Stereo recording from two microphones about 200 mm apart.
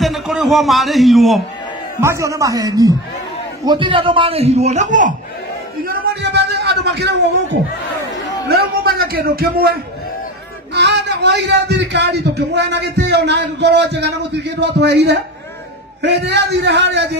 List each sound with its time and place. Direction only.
0.0 s a man's voice: centre (ahead or behind)
2.0 s a man's voice: 15° right (ahead or behind); by 5.1 s 40° right (ahead or behind)
5.9 s a sound: 50° right (ahead or behind)
8.5 s a man's voice: 50° right (ahead or behind)